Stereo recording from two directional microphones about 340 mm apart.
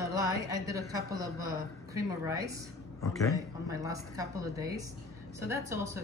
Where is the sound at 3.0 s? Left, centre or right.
Centre.